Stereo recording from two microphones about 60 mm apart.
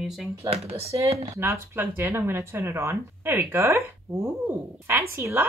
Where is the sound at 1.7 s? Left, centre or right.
Right.